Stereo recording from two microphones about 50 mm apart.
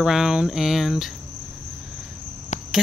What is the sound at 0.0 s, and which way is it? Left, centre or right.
Speech, centre.